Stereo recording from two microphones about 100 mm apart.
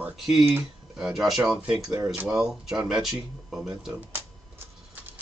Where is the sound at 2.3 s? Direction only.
5° right (ahead or behind).